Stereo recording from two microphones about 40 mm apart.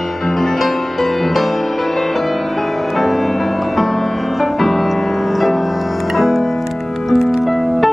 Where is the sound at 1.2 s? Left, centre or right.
Centre.